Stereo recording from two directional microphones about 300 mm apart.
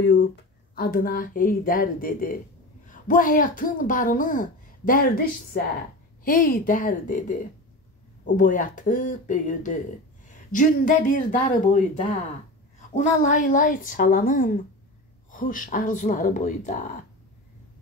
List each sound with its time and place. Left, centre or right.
0.0 s a woman's voice: left
8.4 s a woman's voice: left